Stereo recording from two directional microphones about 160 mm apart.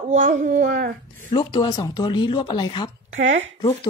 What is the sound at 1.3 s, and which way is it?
Speech, 25° left (ahead or behind).